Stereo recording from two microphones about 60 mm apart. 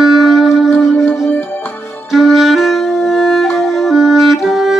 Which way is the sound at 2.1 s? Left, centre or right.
Centre.